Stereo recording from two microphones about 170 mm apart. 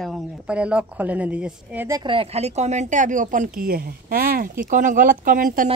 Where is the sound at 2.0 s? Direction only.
30° right (ahead or behind); by 4.5 s 60° right (ahead or behind).